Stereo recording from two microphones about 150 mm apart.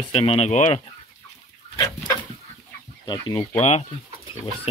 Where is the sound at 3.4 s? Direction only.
45° left (ahead or behind).